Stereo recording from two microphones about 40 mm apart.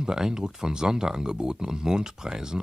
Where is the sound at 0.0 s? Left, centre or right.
Centre.